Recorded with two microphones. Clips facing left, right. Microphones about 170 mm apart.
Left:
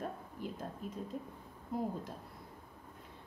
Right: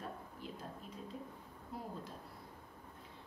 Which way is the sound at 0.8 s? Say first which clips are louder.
Left 8 dB; 50° left (ahead or behind).